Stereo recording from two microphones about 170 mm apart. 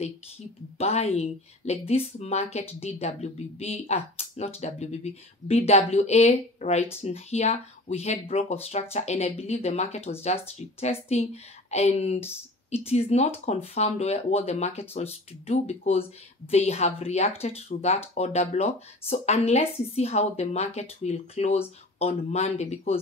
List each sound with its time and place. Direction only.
0.7 s speech: 40° left (ahead or behind)